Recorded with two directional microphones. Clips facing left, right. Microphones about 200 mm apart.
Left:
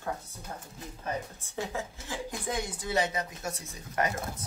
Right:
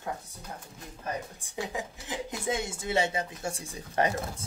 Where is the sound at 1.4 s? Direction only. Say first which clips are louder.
Even; 15° right (ahead or behind).